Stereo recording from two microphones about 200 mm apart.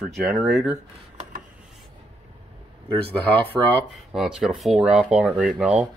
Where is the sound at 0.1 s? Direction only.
10° right (ahead or behind).